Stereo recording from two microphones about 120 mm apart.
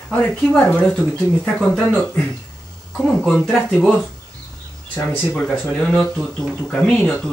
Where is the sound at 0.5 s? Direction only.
Centre (ahead or behind).